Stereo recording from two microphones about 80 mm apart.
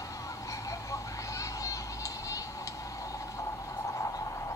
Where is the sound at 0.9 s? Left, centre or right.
Left.